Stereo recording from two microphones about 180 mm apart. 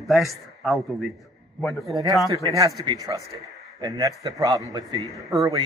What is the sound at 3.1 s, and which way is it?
A man's voice, 25° right (ahead or behind).